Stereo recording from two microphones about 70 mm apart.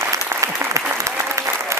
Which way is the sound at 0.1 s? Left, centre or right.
Right.